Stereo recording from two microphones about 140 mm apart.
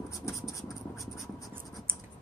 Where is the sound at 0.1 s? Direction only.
20° left (ahead or behind).